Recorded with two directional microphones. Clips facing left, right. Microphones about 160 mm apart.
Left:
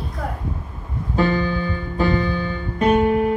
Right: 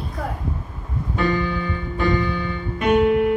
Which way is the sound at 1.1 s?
30° left (ahead or behind).